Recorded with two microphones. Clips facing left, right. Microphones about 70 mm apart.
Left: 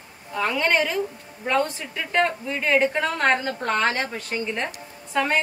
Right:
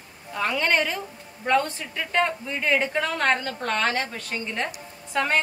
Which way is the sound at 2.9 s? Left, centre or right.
Centre.